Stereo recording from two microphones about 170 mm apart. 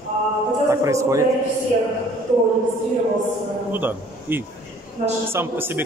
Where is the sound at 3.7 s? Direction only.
10° right (ahead or behind).